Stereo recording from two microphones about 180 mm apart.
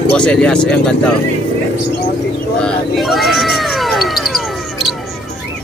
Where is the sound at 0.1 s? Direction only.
5° left (ahead or behind).